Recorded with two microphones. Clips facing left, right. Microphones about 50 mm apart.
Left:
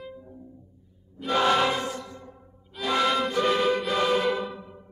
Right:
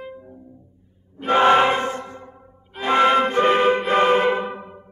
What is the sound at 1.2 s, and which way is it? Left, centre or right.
Music, right.